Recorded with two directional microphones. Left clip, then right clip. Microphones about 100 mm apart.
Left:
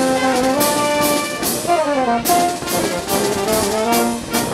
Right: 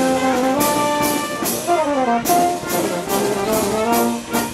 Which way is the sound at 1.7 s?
25° left (ahead or behind).